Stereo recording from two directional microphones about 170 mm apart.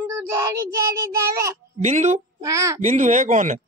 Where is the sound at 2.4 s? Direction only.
20° right (ahead or behind).